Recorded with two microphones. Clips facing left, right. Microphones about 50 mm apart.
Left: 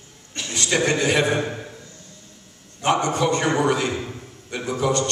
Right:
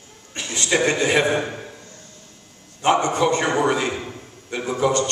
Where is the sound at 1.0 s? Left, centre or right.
Centre.